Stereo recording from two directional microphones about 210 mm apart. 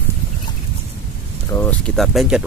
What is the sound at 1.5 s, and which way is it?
Speech, 15° left (ahead or behind).